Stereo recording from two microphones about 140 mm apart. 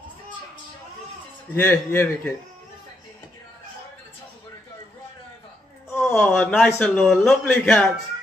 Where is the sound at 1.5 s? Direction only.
15° left (ahead or behind).